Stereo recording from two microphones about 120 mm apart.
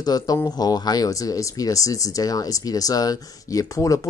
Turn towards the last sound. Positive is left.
turn(degrees=30)  # may be behind; listen again after turning